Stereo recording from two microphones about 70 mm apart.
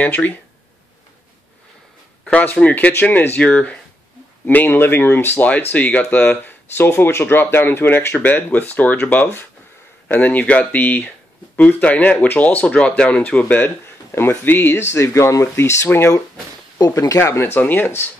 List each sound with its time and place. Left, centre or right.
0.0 s speech: left
2.2 s speech: centre
14.1 s speech: left
16.7 s speech: left